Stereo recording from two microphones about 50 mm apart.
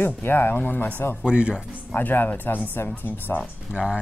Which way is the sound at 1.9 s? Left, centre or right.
Left.